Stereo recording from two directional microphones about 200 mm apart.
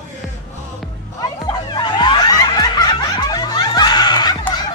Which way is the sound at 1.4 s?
20° left (ahead or behind).